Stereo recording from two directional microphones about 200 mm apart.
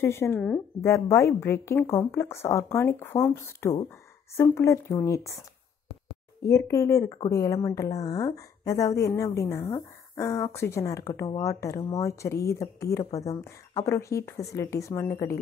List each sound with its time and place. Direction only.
0.0 s a woman's voice: 10° left (ahead or behind)
6.4 s a woman's voice: 15° left (ahead or behind)